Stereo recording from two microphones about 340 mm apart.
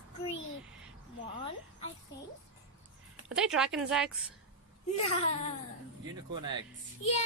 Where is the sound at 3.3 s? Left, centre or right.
Centre.